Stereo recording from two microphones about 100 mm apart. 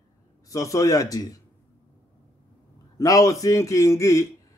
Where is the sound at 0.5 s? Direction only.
35° left (ahead or behind).